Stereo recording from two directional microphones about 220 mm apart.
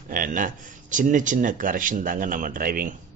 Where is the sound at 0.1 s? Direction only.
40° right (ahead or behind).